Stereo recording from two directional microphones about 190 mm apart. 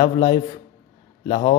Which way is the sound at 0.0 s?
25° left (ahead or behind).